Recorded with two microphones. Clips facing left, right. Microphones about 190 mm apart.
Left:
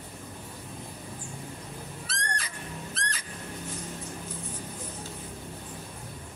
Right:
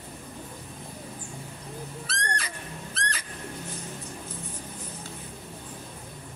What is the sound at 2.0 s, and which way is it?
Neigh, 70° right (ahead or behind).